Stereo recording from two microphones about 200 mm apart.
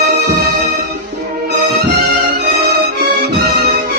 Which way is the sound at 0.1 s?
50° right (ahead or behind).